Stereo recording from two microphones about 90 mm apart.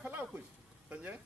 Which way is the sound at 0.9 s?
20° right (ahead or behind).